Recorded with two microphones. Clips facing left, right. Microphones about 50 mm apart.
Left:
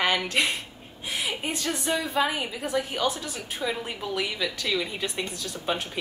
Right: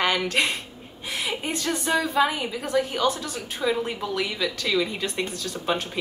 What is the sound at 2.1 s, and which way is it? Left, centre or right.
A woman's voice, centre.